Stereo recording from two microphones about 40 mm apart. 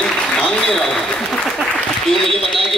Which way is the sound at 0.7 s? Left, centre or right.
Centre.